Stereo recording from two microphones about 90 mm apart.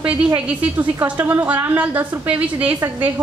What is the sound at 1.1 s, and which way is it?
A woman's voice, 20° right (ahead or behind).